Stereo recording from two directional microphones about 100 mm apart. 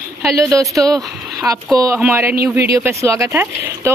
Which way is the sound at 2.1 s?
25° right (ahead or behind).